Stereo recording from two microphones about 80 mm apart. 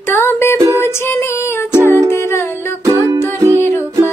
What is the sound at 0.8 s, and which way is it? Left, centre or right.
Female singing, left.